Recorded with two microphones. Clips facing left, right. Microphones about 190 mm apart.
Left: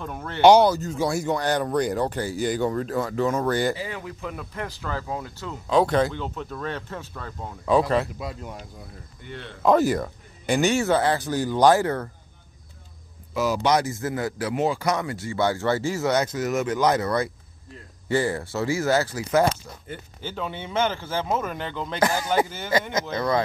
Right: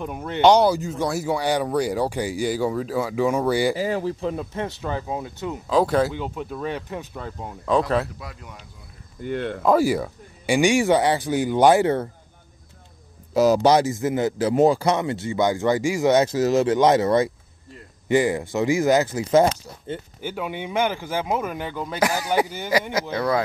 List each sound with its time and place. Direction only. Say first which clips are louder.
0.0 s speech: right 4 dB; 15° right (ahead or behind)
0.4 s speech: left 1 dB; 10° left (ahead or behind)
0.7 s speech: right 1 dB; 10° right (ahead or behind)
3.7 s speech: right 9 dB; 40° right (ahead or behind); by 5.6 s 20° right (ahead or behind)
5.7 s speech: even; 5° right (ahead or behind)
7.6 s speech: even; 5° left (ahead or behind)
8.2 s speech: left 6 dB; 30° left (ahead or behind)
9.2 s speech: right 12 dB; 55° right (ahead or behind)
9.7 s speech: even; 5° right (ahead or behind)
13.3 s speech: right 6 dB; 40° right (ahead or behind)
13.7 s speech: right 4 dB; 20° right (ahead or behind)
14.5 s speech: right 8 dB; 40° right (ahead or behind)
14.9 s speech: right 4 dB; 25° right (ahead or behind)
16.3 s speech: right 6 dB; 30° right (ahead or behind); by 23.4 s 10° right (ahead or behind)